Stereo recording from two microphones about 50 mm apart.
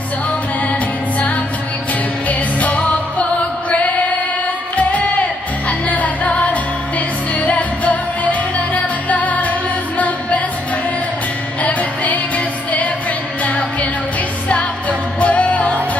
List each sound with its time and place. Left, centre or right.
2.2 s music: left
5.7 s music: left
11.6 s music: left
14.5 s music: left